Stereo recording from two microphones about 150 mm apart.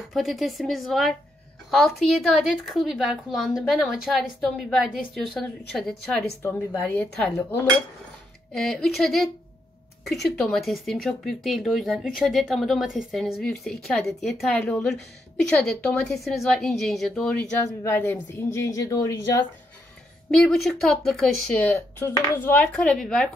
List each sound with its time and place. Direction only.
0.1 s speech: centre (ahead or behind)
17.8 s speech: 15° left (ahead or behind)
20.2 s speech: centre (ahead or behind)
21.7 s speech: 15° left (ahead or behind)